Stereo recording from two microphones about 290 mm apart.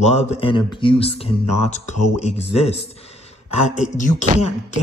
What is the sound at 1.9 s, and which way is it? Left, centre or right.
Speech, left.